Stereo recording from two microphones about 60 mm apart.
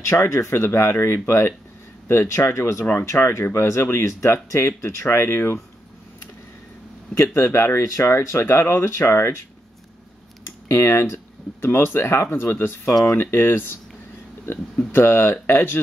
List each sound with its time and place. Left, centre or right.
0.0 s speech: left
7.2 s speech: left
10.7 s speech: left